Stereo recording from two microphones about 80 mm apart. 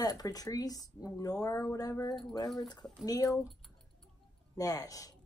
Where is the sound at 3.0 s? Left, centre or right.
Left.